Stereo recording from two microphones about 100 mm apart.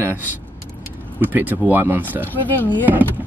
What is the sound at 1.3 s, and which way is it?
Speech, 20° right (ahead or behind).